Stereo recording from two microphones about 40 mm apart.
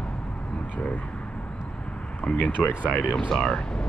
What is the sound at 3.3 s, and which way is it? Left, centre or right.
Speech, centre.